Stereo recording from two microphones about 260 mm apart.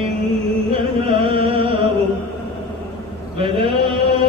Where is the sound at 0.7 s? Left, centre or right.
Right.